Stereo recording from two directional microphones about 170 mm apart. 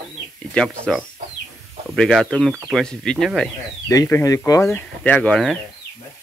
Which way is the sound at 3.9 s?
20° left (ahead or behind).